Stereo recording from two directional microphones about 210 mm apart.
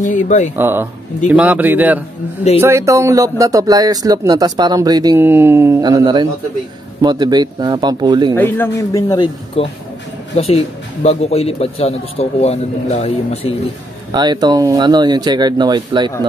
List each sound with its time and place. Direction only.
0.0 s speech: 35° left (ahead or behind)
0.6 s speech: 10° right (ahead or behind)
8.4 s speech: 10° left (ahead or behind)
10.3 s speech: 30° left (ahead or behind)
14.1 s speech: 20° right (ahead or behind)